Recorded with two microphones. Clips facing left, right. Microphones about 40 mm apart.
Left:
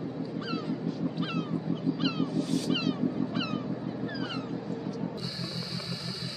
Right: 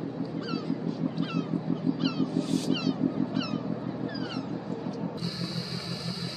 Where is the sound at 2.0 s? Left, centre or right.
Left.